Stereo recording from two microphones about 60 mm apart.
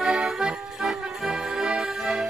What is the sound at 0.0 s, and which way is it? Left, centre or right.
Music, centre.